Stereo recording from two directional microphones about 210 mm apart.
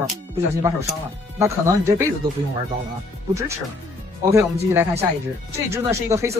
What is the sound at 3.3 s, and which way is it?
Speech, 15° right (ahead or behind).